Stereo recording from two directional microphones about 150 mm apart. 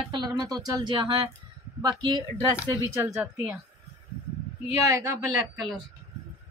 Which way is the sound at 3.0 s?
15° right (ahead or behind).